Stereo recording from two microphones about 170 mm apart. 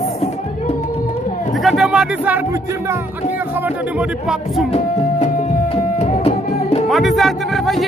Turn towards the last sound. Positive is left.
turn(degrees=0)  # may be behind; listen again after turning